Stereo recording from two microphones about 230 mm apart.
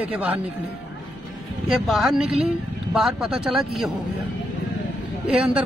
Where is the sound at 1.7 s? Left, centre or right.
Centre.